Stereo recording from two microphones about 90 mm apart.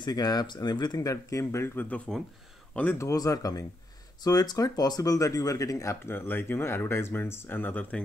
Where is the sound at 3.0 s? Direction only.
40° left (ahead or behind).